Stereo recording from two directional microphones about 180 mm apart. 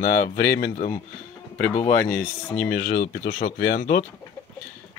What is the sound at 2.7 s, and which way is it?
Speech, 50° left (ahead or behind).